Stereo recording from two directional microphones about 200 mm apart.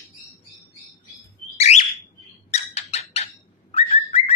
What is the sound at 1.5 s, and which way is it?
Bird, 35° left (ahead or behind).